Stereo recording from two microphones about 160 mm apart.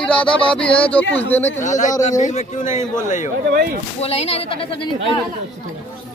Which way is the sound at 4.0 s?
40° left (ahead or behind).